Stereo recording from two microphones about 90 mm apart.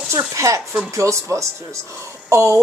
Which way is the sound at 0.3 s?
35° right (ahead or behind).